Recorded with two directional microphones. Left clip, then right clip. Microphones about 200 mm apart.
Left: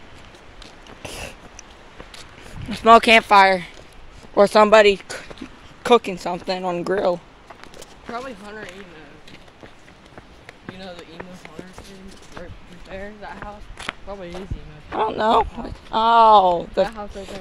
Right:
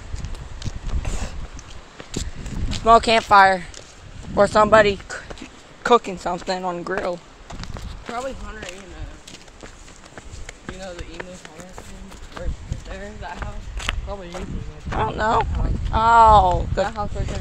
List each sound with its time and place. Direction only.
1.0 s a sound: 30° left (ahead or behind)
2.8 s speech: 35° left (ahead or behind)
4.4 s speech: 40° left (ahead or behind)
5.8 s speech: 25° left (ahead or behind)
6.8 s speech: 50° left (ahead or behind)
11.2 s speech: 40° right (ahead or behind)
13.4 s a sound: 40° right (ahead or behind)
15.0 s speech: 30° left (ahead or behind)